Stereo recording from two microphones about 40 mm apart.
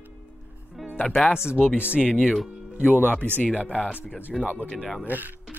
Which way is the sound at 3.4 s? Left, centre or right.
Left.